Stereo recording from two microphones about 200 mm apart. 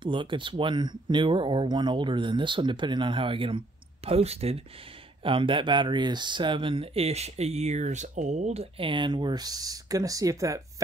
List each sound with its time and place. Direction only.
0.0 s speech: 25° right (ahead or behind)